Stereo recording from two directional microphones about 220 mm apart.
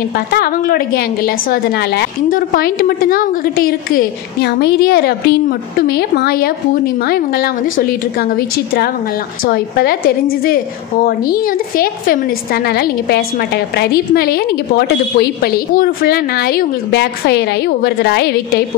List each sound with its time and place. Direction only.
0.1 s a woman's voice: 45° left (ahead or behind)